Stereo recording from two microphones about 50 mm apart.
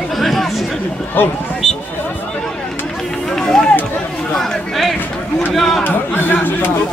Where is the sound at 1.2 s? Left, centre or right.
Left.